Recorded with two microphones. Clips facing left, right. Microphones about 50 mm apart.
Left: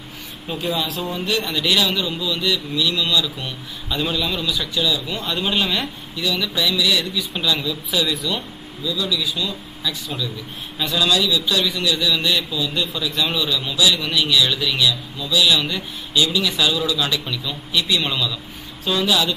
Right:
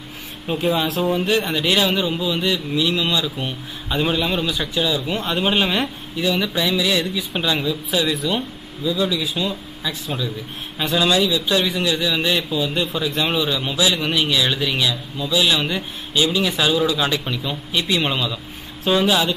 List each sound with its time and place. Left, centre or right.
0.5 s speech: centre
1.2 s speech: right